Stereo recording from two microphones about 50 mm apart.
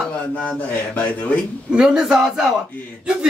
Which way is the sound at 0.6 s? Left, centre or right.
Left.